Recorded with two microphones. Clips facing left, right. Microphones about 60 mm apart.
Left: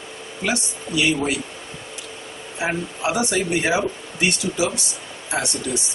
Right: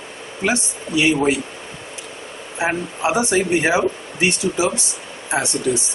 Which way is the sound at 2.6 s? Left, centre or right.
Right.